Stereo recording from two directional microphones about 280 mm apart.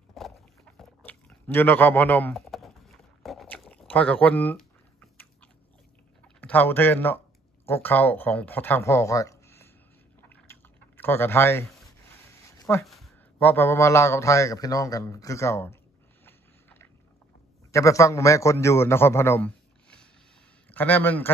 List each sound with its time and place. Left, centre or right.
0.2 s dog: centre
0.7 s chewing: centre
3.2 s a sound: centre
5.1 s biting: centre
6.2 s speech: centre
10.3 s a sound: centre
12.4 s speech: centre
16.3 s biting: centre
17.6 s a man's voice: centre